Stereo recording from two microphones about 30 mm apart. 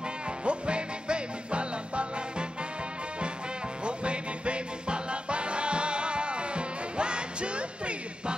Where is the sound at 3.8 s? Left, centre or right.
Right.